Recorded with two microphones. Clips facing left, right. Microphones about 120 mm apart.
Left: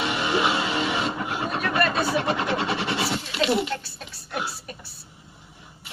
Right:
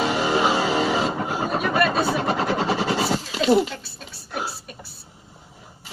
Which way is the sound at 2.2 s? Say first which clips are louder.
Right 3 dB; 35° right (ahead or behind).